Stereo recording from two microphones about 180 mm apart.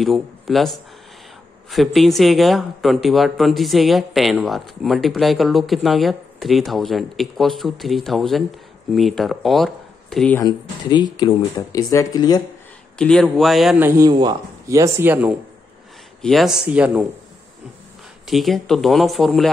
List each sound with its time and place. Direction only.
0.0 s speech: centre (ahead or behind)
10.4 s speech: 25° left (ahead or behind)
12.9 s speech: 5° left (ahead or behind)
13.7 s speech: 15° right (ahead or behind)
16.2 s speech: centre (ahead or behind)
18.2 s speech: centre (ahead or behind)